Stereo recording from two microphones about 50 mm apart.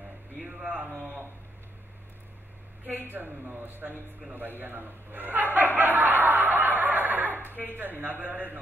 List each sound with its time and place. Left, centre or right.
0.4 s a sound: centre
3.0 s a man's voice: right
5.8 s snicker: right
7.7 s a man's voice: right